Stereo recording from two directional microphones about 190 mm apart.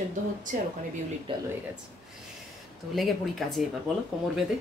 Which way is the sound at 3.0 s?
Centre (ahead or behind).